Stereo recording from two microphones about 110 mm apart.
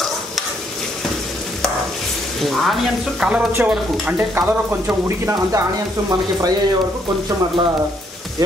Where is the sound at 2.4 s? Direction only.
Centre (ahead or behind).